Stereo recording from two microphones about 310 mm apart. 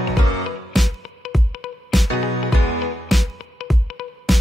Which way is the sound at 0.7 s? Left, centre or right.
Centre.